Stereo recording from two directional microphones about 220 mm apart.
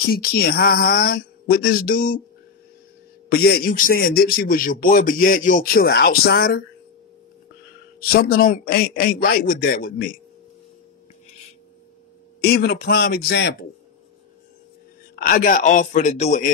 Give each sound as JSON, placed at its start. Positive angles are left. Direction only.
{"t": 0.1, "sound": "speech", "side_deg": 40}
{"t": 3.3, "sound": "a man's voice", "side_deg": 45}
{"t": 8.0, "sound": "a man's voice", "side_deg": 45}
{"t": 12.4, "sound": "speech", "side_deg": 45}
{"t": 15.1, "sound": "a man's voice", "side_deg": 40}